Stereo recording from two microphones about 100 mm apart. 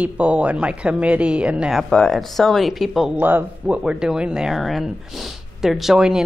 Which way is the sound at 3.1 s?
15° right (ahead or behind).